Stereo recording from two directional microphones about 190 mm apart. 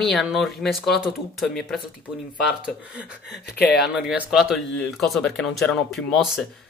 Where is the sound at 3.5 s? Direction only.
55° left (ahead or behind).